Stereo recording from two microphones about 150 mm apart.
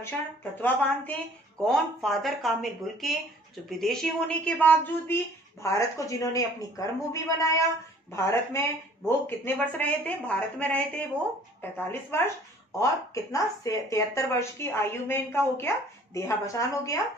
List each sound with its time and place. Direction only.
0.0 s speech: 15° left (ahead or behind)
1.6 s speech: centre (ahead or behind)
12.7 s speech: 20° left (ahead or behind)